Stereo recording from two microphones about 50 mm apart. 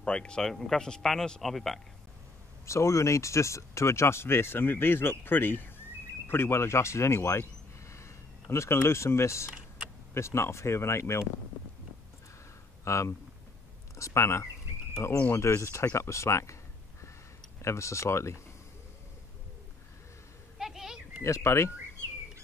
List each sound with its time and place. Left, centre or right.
0.0 s speech: centre
2.6 s speech: left
12.8 s speech: left
17.6 s speech: left
20.5 s a sound: centre
21.2 s speech: left